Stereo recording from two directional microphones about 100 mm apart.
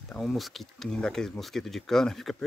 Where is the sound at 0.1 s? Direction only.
Centre (ahead or behind).